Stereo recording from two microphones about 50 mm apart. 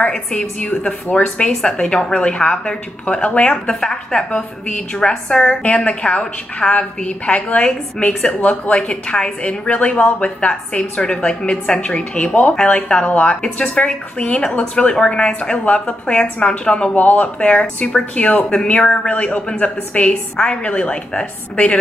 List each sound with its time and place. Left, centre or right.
0.3 s a woman's voice: left
1.5 s a woman's voice: centre
1.8 s a woman's voice: left
13.3 s a woman's voice: centre
16.9 s a woman's voice: left